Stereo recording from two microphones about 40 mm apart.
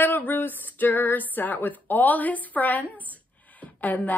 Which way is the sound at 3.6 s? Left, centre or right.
Left.